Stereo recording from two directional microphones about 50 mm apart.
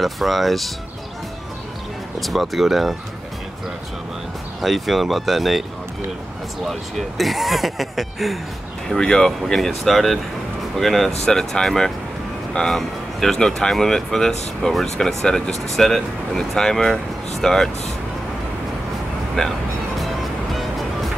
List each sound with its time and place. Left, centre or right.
0.0 s speech: centre
2.2 s speech: centre
4.6 s speech: centre
6.6 s speech: centre
8.8 s speech: centre
19.4 s speech: centre